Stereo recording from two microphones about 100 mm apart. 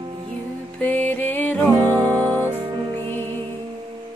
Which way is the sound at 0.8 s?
15° left (ahead or behind).